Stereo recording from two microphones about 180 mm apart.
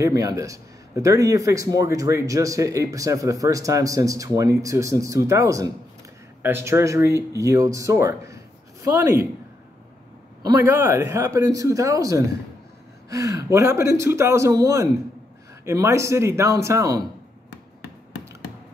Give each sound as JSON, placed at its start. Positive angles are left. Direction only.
{"t": 0.0, "sound": "speech", "side_deg": -20}
{"t": 10.4, "sound": "speech", "side_deg": -15}